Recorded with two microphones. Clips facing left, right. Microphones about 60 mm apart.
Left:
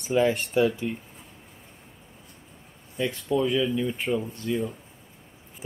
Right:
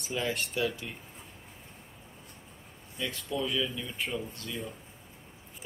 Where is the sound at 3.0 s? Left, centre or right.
Left.